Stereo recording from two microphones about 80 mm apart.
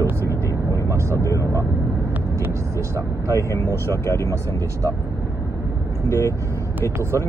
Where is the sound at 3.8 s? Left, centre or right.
Left.